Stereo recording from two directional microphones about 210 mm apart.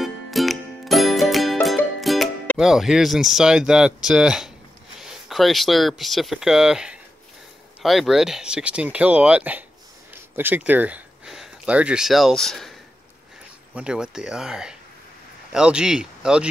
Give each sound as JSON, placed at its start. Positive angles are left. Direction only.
{"t": 0.0, "sound": "music", "side_deg": 0}
{"t": 5.0, "sound": "speech", "side_deg": 0}
{"t": 13.7, "sound": "a man's voice", "side_deg": -5}